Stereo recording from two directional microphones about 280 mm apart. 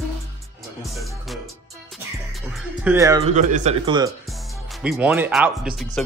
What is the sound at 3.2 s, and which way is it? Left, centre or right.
Speech, right.